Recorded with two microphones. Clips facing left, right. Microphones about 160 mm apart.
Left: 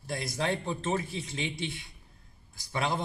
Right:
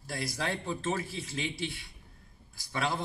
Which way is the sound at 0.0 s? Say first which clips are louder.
Left 3 dB; 20° left (ahead or behind).